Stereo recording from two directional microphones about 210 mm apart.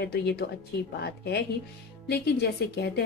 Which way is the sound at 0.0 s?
50° left (ahead or behind).